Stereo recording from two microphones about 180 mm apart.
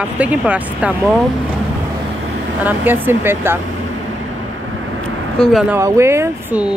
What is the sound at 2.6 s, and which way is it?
Speech, 10° right (ahead or behind).